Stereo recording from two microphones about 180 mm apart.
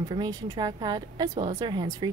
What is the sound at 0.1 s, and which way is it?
Speech, 25° right (ahead or behind).